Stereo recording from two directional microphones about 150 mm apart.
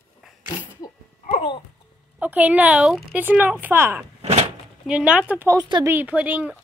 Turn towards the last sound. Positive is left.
turn(degrees=-10)  # may be behind; listen again after turning